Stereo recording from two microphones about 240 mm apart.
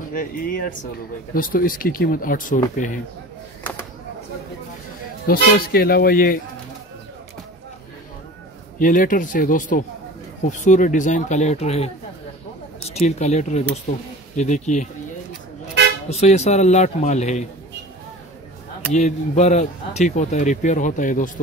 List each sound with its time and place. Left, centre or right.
0.1 s speech: left
5.2 s speech: left
8.7 s speech: left
16.1 s speech: left
18.9 s speech: left